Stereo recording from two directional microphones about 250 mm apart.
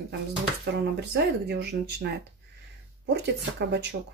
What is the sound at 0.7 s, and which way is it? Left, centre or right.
Speech, right.